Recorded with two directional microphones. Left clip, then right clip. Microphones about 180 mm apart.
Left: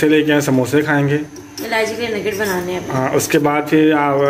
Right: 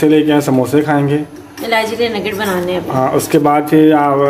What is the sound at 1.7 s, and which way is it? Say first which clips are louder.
A woman's voice: right 4 dB; 50° right (ahead or behind).